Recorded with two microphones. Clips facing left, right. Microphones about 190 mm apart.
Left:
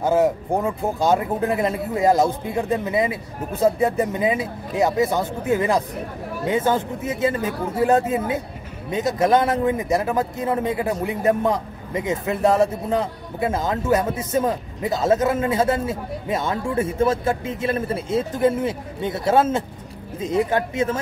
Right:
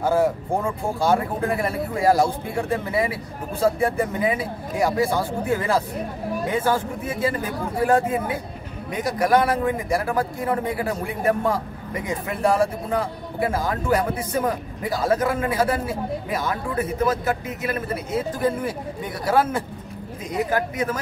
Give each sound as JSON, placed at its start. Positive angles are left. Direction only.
{"t": 0.0, "sound": "a man's voice", "side_deg": 20}